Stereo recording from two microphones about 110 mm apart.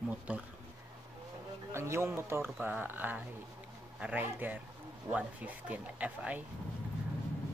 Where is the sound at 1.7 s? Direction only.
25° right (ahead or behind).